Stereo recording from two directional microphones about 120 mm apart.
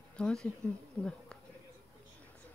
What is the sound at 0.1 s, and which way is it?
Speech, 5° left (ahead or behind).